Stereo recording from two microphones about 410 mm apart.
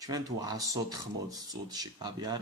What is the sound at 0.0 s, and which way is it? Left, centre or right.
Speech, centre.